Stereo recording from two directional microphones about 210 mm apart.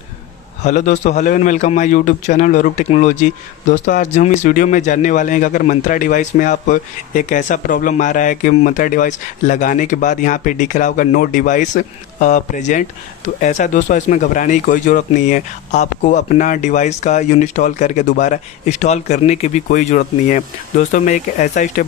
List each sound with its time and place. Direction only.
0.7 s a man's voice: 35° left (ahead or behind)